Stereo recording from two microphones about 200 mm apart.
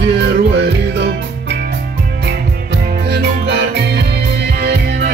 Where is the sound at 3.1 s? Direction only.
55° right (ahead or behind).